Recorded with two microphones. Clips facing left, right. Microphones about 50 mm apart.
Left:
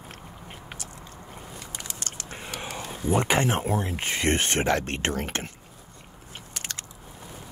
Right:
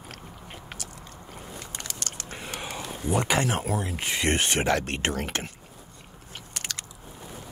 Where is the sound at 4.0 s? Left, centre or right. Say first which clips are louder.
Right 2 dB; left.